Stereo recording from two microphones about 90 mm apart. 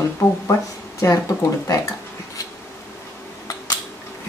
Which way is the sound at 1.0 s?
40° left (ahead or behind).